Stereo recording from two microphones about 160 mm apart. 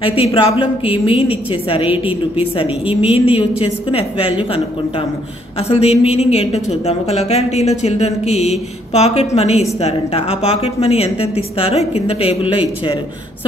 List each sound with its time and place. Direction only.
0.0 s a woman's voice: 35° left (ahead or behind)